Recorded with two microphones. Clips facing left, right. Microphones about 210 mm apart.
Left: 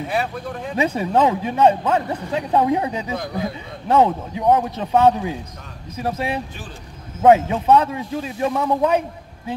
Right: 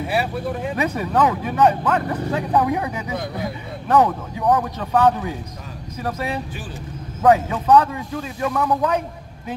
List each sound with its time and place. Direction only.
0.1 s speech: 5° right (ahead or behind)
0.7 s speech: 25° left (ahead or behind)